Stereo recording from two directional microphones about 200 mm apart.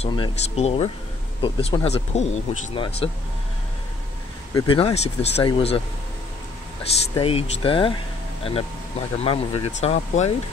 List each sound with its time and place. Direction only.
0.0 s speech: 25° left (ahead or behind)
4.6 s speech: 25° left (ahead or behind)
6.9 s speech: 30° left (ahead or behind)
9.2 s speech: 30° left (ahead or behind)